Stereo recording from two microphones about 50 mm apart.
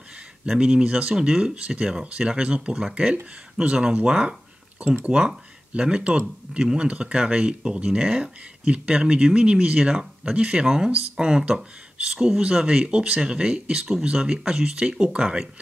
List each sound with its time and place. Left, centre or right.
0.5 s speech: centre